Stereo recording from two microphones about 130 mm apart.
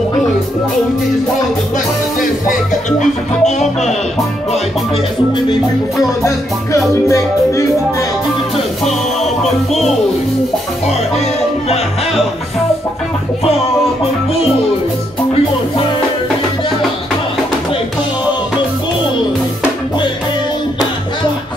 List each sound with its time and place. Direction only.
3.0 s music: 65° left (ahead or behind)
7.1 s music: 25° left (ahead or behind)